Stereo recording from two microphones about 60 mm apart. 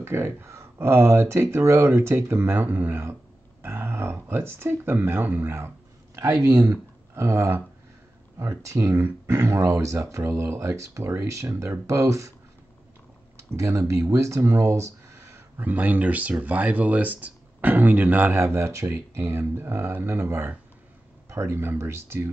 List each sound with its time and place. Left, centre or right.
0.0 s speech: right
6.1 s speech: right
6.7 s speech: right
13.4 s speech: right
15.6 s speech: right
18.4 s speech: right